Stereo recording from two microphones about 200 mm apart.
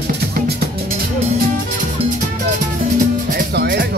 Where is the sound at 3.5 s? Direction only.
55° right (ahead or behind).